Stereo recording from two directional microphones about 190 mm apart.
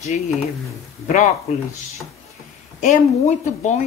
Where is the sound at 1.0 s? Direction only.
40° left (ahead or behind).